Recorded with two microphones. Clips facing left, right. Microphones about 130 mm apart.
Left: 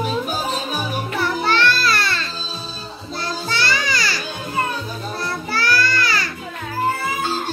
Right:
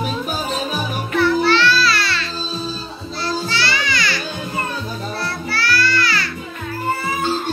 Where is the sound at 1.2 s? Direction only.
50° left (ahead or behind).